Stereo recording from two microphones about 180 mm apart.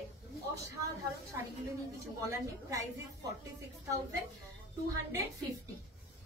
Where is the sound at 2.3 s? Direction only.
20° right (ahead or behind).